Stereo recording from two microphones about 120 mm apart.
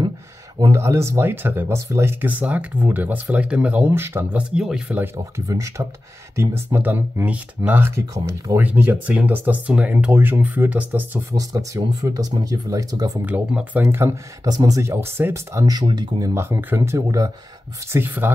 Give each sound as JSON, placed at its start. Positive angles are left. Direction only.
{"t": 0.6, "sound": "speech", "side_deg": -25}
{"t": 5.0, "sound": "speech", "side_deg": -25}
{"t": 11.3, "sound": "speech", "side_deg": -30}
{"t": 13.2, "sound": "speech", "side_deg": -10}
{"t": 16.3, "sound": "speech", "side_deg": -20}